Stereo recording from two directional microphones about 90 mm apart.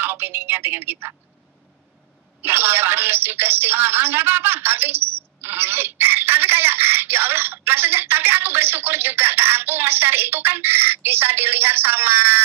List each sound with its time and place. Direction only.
0.0 s speech: 25° right (ahead or behind)
2.4 s speech: 25° right (ahead or behind)